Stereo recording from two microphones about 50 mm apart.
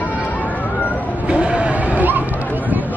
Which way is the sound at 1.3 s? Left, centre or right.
Right.